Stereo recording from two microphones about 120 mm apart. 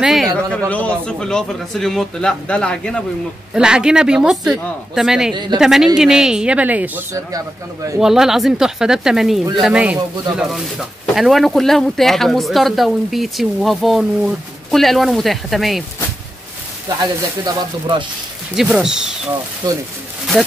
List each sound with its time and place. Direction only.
0.0 s speech: centre (ahead or behind)
0.5 s a man's voice: 10° left (ahead or behind)
3.5 s speech: 5° right (ahead or behind)
5.3 s speech: 40° right (ahead or behind)
5.6 s speech: 5° right (ahead or behind)
7.2 s speech: 30° right (ahead or behind)
8.0 s speech: 5° right (ahead or behind)
17.0 s speech: 35° right (ahead or behind)
18.6 s speech: 5° right (ahead or behind)
19.6 s speech: 35° right (ahead or behind)
20.3 s speech: centre (ahead or behind)